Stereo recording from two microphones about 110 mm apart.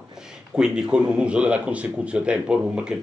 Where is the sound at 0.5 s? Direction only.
10° right (ahead or behind).